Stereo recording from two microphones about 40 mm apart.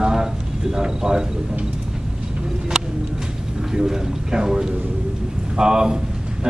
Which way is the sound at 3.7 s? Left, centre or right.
Centre.